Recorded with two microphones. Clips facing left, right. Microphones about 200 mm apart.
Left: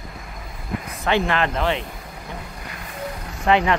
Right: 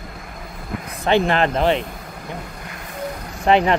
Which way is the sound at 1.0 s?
30° right (ahead or behind).